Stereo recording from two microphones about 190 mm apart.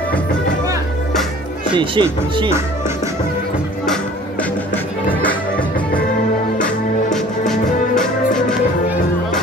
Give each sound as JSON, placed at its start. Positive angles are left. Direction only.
{"t": 2.0, "sound": "speech", "side_deg": -25}
{"t": 3.8, "sound": "music", "side_deg": 5}
{"t": 6.6, "sound": "music", "side_deg": 5}